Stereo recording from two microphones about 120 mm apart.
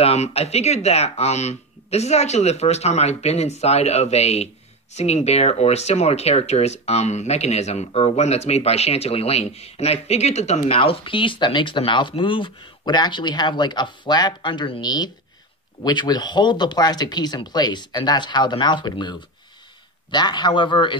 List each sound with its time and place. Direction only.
0.0 s speech: 60° left (ahead or behind); by 20.9 s 40° left (ahead or behind)